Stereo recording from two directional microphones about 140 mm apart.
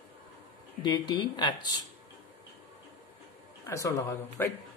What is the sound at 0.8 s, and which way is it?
Speech, 30° left (ahead or behind).